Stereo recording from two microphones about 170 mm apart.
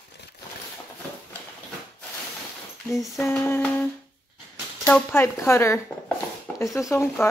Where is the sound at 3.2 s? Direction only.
15° left (ahead or behind).